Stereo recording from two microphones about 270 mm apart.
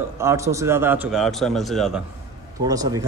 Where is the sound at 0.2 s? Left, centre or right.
Centre.